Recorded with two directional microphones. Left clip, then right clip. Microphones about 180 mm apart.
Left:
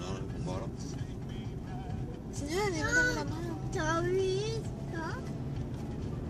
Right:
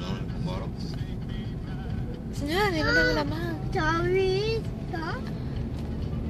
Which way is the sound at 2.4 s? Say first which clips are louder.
Right 7 dB; 5° right (ahead or behind).